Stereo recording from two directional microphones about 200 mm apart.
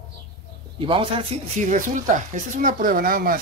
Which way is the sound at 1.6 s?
40° right (ahead or behind).